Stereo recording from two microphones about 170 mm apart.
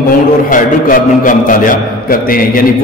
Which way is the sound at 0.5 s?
50° left (ahead or behind).